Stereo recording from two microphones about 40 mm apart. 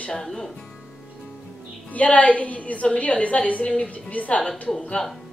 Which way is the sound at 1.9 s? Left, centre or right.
Left.